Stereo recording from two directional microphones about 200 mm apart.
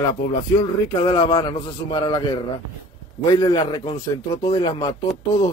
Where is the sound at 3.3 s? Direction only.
20° left (ahead or behind).